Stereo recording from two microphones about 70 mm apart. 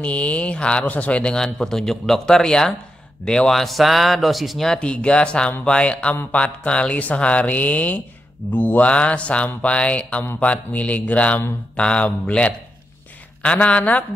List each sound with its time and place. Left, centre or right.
0.0 s speech: centre
4.7 s speech: centre